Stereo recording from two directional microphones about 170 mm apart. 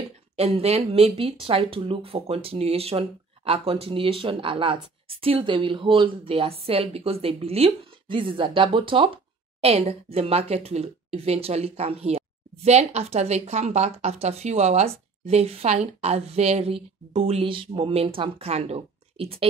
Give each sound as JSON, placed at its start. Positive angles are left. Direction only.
{"t": 0.4, "sound": "speech", "side_deg": -35}